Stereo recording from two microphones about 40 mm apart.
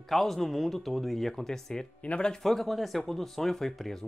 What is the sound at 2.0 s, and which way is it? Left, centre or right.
Speech, left.